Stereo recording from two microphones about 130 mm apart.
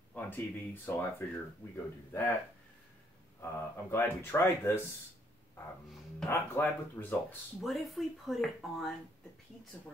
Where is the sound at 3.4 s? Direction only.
20° left (ahead or behind).